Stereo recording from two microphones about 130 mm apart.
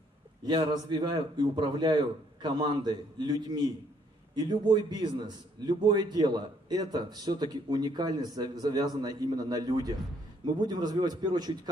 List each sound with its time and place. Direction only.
0.5 s a man's voice: 35° right (ahead or behind)